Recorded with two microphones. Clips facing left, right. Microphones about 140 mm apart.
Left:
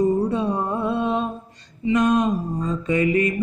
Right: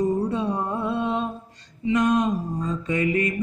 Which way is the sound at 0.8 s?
65° left (ahead or behind).